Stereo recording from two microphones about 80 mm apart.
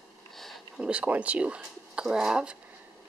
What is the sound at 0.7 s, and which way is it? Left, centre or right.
Speech, centre.